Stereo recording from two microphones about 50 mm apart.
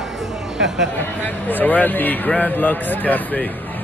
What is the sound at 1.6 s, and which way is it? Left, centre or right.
Speech, left.